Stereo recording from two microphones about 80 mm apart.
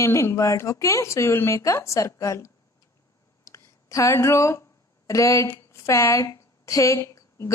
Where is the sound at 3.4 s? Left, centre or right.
Left.